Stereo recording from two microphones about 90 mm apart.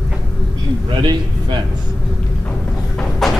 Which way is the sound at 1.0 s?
55° right (ahead or behind).